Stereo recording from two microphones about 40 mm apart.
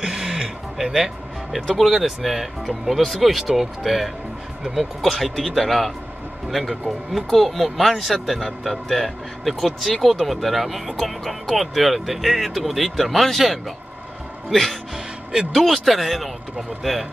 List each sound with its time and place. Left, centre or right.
0.0 s a sound: centre
0.8 s speech: centre
1.7 s speech: centre